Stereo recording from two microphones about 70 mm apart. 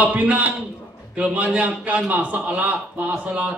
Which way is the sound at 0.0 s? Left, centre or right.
Right.